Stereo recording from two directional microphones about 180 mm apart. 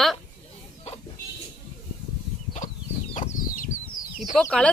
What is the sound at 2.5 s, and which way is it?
Chicken, 45° left (ahead or behind).